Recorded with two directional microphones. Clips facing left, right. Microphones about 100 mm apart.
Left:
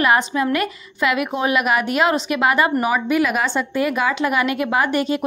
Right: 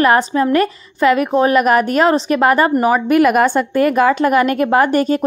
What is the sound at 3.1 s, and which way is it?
A woman's voice, 55° right (ahead or behind).